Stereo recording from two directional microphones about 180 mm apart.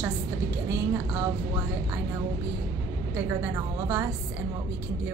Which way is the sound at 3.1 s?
15° right (ahead or behind).